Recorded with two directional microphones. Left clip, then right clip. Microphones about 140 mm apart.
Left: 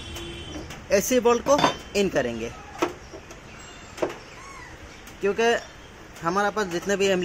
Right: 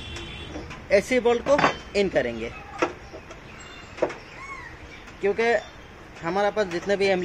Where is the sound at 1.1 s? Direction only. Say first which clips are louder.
Left 1 dB; 45° left (ahead or behind).